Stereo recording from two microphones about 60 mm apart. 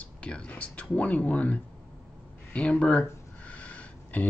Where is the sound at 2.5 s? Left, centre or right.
Centre.